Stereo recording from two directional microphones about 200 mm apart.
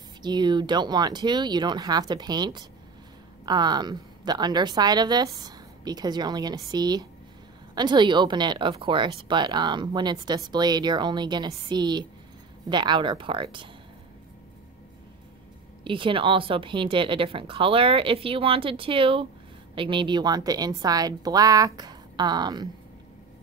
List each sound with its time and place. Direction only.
0.2 s speech: 20° right (ahead or behind)
15.8 s speech: 25° right (ahead or behind)